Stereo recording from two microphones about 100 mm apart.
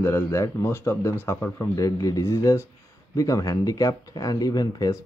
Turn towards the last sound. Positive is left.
turn(degrees=40)  # may be behind; listen again after turning